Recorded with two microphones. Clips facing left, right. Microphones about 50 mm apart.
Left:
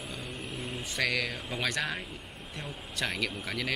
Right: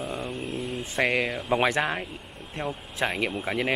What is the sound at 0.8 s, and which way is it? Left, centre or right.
Speech, right.